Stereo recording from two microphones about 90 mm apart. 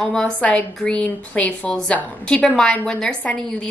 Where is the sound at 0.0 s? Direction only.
10° left (ahead or behind).